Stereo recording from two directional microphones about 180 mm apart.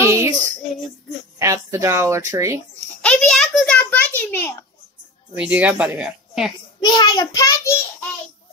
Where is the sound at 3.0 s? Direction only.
5° left (ahead or behind).